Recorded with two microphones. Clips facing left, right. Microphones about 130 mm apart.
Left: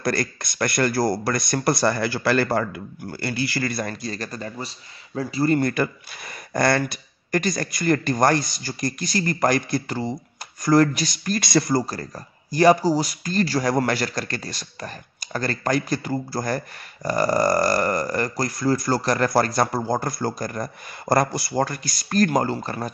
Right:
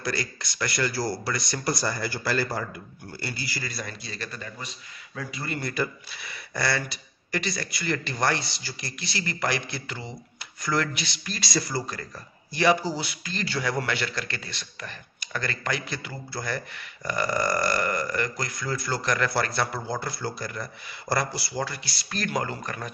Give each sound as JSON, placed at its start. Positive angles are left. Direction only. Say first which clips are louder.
{"t": 0.0, "sound": "speech", "louder": "left 6 dB", "side_deg": 50}
{"t": 5.6, "sound": "speech", "louder": "left 7 dB", "side_deg": 50}
{"t": 11.8, "sound": "speech", "louder": "left 6 dB", "side_deg": 40}